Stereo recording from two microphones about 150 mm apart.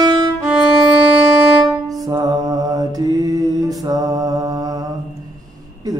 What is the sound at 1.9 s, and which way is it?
Mantra, 25° right (ahead or behind).